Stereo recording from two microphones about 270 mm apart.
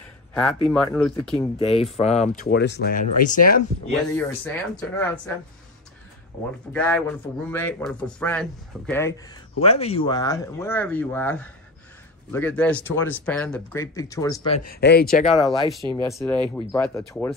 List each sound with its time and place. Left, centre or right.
0.3 s a man's voice: centre
1.6 s speech: left
4.2 s a man's voice: centre
6.7 s a man's voice: centre
9.6 s speech: left
14.7 s speech: left
15.3 s speech: centre
15.8 s speech: centre
16.2 s a man's voice: centre